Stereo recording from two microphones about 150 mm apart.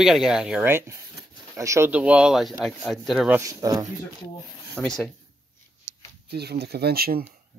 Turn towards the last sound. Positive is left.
turn(degrees=-90)